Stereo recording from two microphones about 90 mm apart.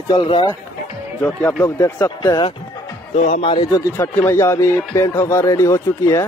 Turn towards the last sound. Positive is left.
turn(degrees=35)  # may be behind; listen again after turning